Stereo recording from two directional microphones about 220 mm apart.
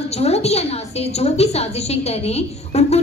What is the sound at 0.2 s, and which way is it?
A woman's voice, 30° left (ahead or behind).